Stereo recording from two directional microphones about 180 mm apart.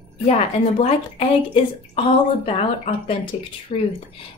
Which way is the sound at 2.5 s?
35° left (ahead or behind).